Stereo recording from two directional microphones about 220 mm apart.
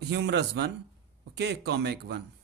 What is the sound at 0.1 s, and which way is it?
A man's voice, 50° right (ahead or behind).